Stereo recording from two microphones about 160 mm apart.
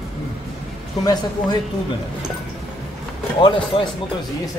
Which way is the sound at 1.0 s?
25° left (ahead or behind).